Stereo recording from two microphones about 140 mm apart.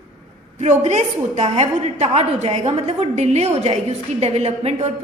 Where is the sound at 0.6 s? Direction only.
55° right (ahead or behind).